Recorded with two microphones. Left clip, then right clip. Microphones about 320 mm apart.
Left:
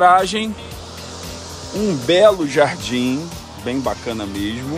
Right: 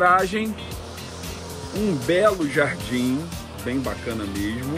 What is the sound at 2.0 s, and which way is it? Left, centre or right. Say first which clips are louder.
Speech: left 7 dB; centre.